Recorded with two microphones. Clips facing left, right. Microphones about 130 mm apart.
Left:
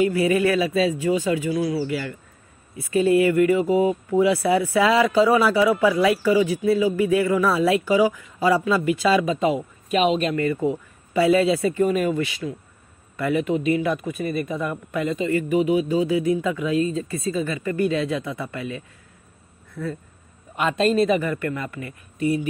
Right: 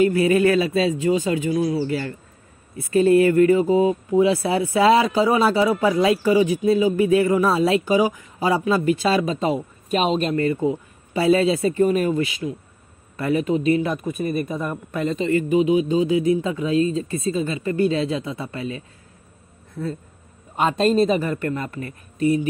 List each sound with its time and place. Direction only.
0.3 s speech: 30° right (ahead or behind)